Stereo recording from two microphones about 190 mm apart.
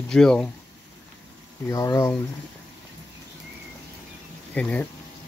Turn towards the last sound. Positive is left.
turn(degrees=5)  # may be behind; listen again after turning